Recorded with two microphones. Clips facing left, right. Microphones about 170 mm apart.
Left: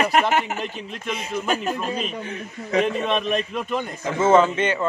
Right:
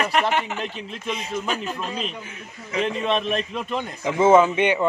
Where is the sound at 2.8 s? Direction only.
Centre (ahead or behind).